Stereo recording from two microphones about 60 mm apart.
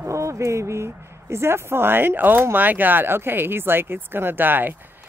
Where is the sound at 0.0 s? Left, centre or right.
Right.